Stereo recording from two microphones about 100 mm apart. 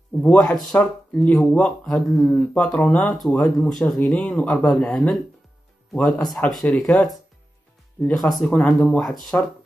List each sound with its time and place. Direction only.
0.2 s speech: 10° left (ahead or behind)
3.1 s speech: 5° left (ahead or behind)
3.3 s speech: 15° left (ahead or behind)